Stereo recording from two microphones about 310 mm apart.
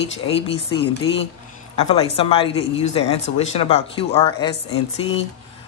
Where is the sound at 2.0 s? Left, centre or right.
Centre.